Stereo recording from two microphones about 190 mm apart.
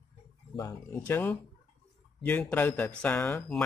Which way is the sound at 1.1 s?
10° left (ahead or behind).